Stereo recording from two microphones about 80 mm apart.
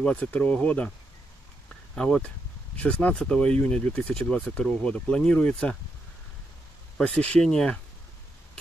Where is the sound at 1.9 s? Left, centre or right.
Centre.